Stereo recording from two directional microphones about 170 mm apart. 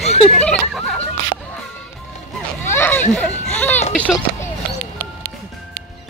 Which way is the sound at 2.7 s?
10° left (ahead or behind).